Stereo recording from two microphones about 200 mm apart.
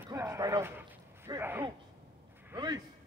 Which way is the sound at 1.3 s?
10° right (ahead or behind).